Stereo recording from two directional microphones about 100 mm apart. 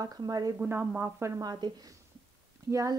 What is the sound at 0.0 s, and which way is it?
Speech, 40° right (ahead or behind).